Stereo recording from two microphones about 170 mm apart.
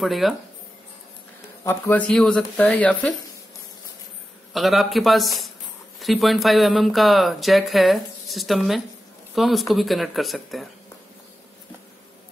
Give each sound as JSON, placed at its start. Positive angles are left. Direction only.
{"t": 0.0, "sound": "speech", "side_deg": 0}
{"t": 1.6, "sound": "speech", "side_deg": 15}
{"t": 4.6, "sound": "speech", "side_deg": 0}